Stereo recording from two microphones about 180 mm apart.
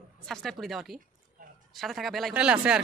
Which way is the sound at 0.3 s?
Centre (ahead or behind).